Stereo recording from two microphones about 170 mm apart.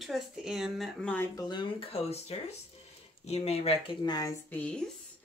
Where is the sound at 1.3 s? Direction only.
25° left (ahead or behind).